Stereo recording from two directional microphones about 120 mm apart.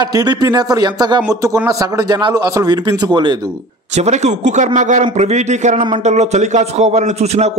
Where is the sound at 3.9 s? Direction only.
70° right (ahead or behind).